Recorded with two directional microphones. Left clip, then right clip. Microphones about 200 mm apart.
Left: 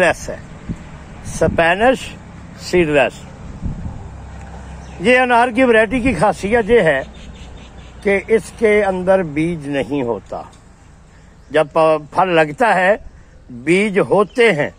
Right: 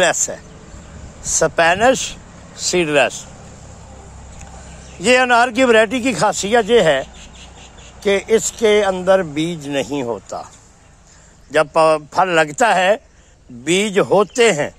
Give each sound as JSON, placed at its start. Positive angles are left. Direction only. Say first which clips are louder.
{"t": 0.0, "sound": "speech", "louder": "left 1 dB", "side_deg": -20}
{"t": 5.0, "sound": "speech", "louder": "even", "side_deg": -15}
{"t": 11.5, "sound": "speech", "louder": "even", "side_deg": -10}